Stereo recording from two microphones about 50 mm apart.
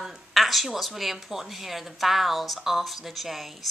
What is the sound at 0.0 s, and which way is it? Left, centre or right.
Speech, centre.